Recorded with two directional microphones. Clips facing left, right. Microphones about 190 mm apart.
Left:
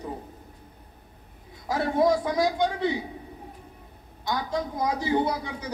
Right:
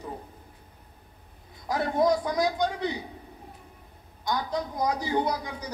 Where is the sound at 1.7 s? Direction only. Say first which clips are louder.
Left 1 dB; centre (ahead or behind).